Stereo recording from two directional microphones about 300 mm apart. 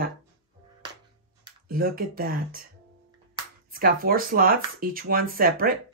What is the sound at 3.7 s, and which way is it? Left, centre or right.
Speech, right.